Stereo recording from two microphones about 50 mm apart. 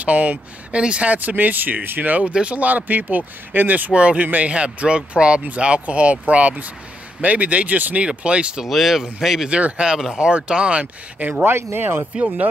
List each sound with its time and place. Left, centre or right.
0.0 s speech: right
8.6 s speech: centre
9.5 s speech: right
9.8 s speech: centre; by 11.4 s right
11.4 s speech: right